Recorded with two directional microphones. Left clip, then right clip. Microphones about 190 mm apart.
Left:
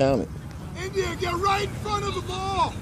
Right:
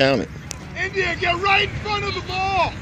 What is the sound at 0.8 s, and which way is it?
Speech, 50° left (ahead or behind).